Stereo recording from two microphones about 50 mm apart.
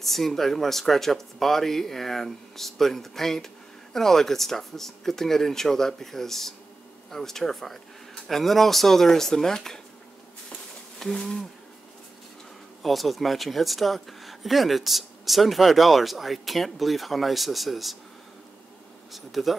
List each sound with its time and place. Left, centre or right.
0.0 s speech: centre
11.0 s speech: centre
12.8 s speech: centre
19.1 s speech: centre